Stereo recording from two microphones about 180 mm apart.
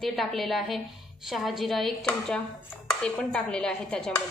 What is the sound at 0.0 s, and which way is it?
A woman's voice, centre (ahead or behind).